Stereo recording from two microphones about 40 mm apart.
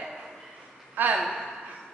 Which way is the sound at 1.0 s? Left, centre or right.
Right.